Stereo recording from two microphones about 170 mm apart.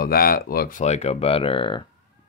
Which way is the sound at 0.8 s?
40° left (ahead or behind).